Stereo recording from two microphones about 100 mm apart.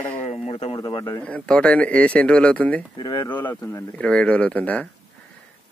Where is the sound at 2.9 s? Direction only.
45° left (ahead or behind).